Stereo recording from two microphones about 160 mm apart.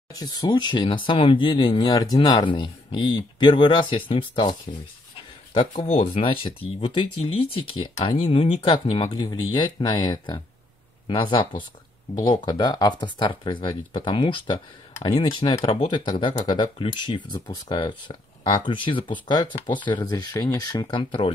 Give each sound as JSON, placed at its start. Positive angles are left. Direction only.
{"t": 0.1, "sound": "speech", "side_deg": 25}